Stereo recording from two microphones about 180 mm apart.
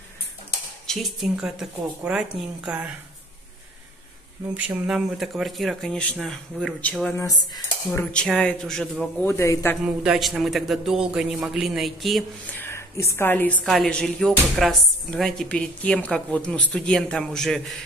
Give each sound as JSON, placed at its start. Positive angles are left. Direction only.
{"t": 0.8, "sound": "a woman's voice", "side_deg": 0}
{"t": 4.6, "sound": "a woman's voice", "side_deg": -5}
{"t": 7.2, "sound": "cutlery", "side_deg": 20}
{"t": 8.0, "sound": "a woman's voice", "side_deg": 5}
{"t": 9.2, "sound": "speech", "side_deg": 15}
{"t": 10.0, "sound": "a woman's voice", "side_deg": 0}
{"t": 12.5, "sound": "a woman's voice", "side_deg": 15}